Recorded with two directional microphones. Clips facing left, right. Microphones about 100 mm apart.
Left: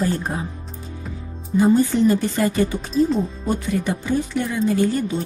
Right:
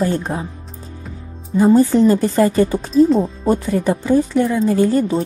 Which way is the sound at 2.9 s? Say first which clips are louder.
Right 8 dB; centre (ahead or behind).